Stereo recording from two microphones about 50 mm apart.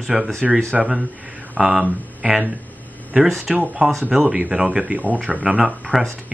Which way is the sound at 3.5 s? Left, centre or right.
Centre.